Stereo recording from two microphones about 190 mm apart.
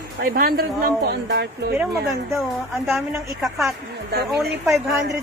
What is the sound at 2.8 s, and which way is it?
Speech, centre (ahead or behind).